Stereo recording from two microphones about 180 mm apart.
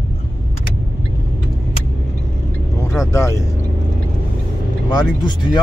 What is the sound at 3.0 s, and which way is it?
Vehicle, 15° left (ahead or behind).